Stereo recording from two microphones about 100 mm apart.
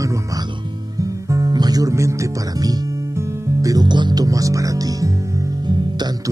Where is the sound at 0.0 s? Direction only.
35° right (ahead or behind).